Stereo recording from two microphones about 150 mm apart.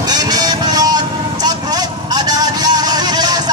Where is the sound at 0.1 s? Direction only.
25° right (ahead or behind).